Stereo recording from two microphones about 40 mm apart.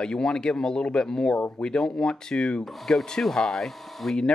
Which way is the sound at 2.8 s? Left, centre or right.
Centre.